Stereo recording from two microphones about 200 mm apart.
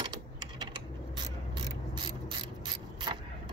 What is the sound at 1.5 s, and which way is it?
Mechanisms, 25° right (ahead or behind).